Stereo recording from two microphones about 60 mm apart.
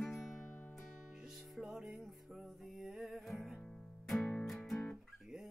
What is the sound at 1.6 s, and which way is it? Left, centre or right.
Music, centre.